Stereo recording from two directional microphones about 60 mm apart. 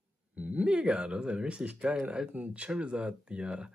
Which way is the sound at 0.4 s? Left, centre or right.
Right.